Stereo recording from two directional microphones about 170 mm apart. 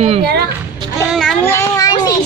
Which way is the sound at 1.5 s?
20° left (ahead or behind).